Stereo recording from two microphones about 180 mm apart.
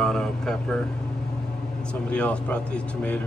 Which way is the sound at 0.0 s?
5° left (ahead or behind).